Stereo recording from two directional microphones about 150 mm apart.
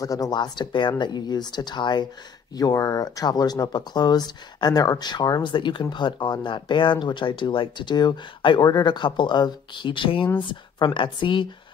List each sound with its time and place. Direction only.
0.0 s speech: 25° left (ahead or behind)